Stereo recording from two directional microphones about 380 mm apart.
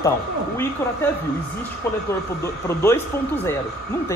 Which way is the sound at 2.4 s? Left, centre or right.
Centre.